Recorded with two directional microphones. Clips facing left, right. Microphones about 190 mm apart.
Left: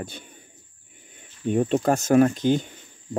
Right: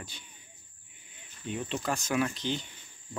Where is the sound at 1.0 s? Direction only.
45° left (ahead or behind).